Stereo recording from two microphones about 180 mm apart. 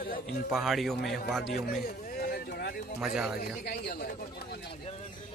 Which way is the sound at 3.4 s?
60° left (ahead or behind).